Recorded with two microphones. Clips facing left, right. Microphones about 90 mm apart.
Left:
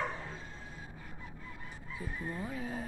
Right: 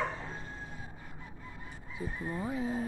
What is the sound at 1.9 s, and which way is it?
Speech, 20° right (ahead or behind).